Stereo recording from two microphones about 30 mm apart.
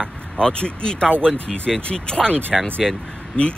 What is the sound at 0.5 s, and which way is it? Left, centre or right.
Speech, left.